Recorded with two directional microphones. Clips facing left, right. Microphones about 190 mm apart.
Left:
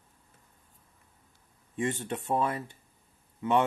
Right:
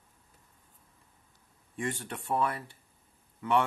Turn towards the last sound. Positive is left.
turn(degrees=20)  # may be behind; listen again after turning